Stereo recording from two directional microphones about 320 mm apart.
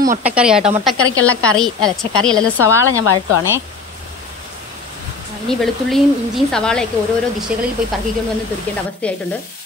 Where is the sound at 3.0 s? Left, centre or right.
Left.